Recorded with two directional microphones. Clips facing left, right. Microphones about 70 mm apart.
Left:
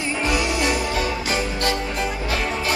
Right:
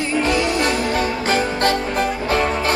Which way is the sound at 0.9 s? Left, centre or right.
Right.